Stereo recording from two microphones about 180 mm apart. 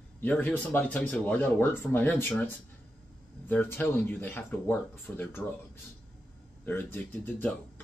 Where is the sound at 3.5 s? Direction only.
10° left (ahead or behind).